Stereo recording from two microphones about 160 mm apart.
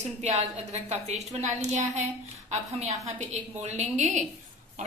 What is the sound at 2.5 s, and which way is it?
A woman's voice, 45° right (ahead or behind).